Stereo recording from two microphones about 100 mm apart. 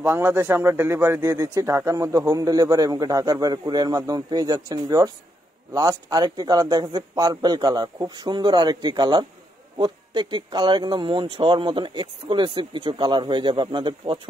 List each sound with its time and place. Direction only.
0.0 s a man's voice: 20° right (ahead or behind); by 14.2 s 55° right (ahead or behind)